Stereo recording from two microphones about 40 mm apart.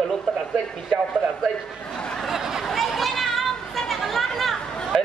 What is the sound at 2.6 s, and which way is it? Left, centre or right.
Chatter, centre.